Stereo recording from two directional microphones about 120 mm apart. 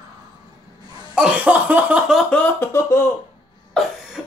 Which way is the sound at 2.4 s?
20° left (ahead or behind).